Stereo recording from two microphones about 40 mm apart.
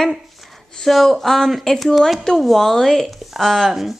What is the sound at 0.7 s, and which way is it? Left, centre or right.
Speech, centre.